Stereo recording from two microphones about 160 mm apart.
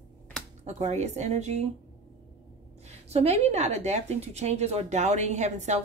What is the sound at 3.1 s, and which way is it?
A woman's voice, 40° right (ahead or behind).